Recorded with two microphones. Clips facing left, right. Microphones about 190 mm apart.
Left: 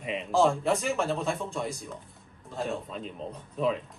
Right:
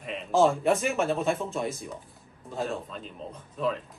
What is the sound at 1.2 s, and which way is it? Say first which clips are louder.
Speech: right 3 dB; centre (ahead or behind).